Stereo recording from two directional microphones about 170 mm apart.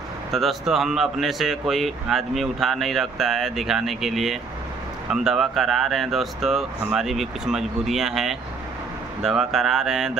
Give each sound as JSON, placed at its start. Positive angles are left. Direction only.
{"t": 0.3, "sound": "speech", "side_deg": 0}